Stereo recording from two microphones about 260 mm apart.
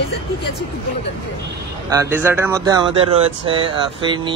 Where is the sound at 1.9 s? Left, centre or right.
Centre.